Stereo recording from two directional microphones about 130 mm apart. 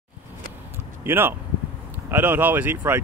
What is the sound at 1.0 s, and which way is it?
Speech, 15° right (ahead or behind).